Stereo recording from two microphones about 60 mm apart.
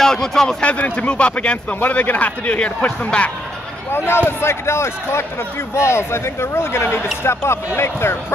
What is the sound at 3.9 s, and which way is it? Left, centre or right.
Speech, left.